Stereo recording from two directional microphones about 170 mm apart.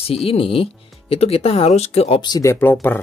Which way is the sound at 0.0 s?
35° left (ahead or behind).